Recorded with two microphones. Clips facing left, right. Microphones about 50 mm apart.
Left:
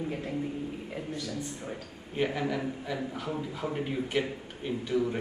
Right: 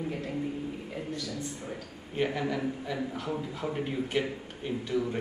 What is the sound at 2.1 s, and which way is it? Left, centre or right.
A man's voice, centre.